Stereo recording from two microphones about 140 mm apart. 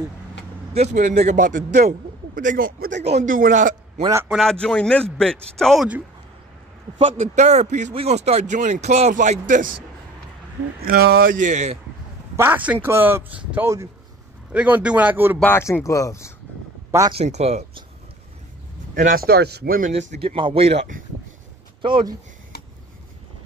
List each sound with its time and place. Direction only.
0.7 s a man's voice: 55° right (ahead or behind); by 3.0 s 90° right
3.2 s a man's voice: 75° right (ahead or behind)
4.3 s a man's voice: centre (ahead or behind)
7.0 s speech: 40° right (ahead or behind)
7.3 s speech: 55° right (ahead or behind)
11.0 s a man's voice: 90° right; by 11.8 s 55° right (ahead or behind)
12.4 s speech: 10° right (ahead or behind)
14.5 s speech: 10° right (ahead or behind)
15.3 s speech: 15° left (ahead or behind)
17.1 s speech: 50° right (ahead or behind)
18.9 s speech: 85° right
19.9 s speech: 60° right (ahead or behind)
20.2 s speech: 40° right (ahead or behind)
21.8 s speech: 35° right (ahead or behind)